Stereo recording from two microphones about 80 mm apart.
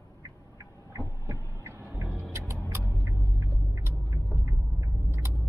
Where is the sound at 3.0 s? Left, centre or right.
Right.